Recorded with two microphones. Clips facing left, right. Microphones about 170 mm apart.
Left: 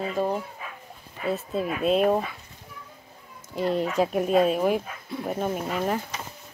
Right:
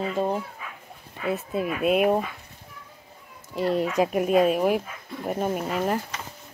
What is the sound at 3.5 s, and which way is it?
Speech, 5° right (ahead or behind).